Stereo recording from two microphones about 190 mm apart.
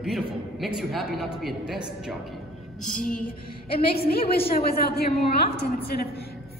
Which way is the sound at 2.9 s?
45° left (ahead or behind).